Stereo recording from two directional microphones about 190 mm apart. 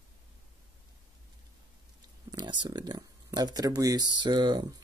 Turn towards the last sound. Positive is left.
turn(degrees=-20)  # may be behind; listen again after turning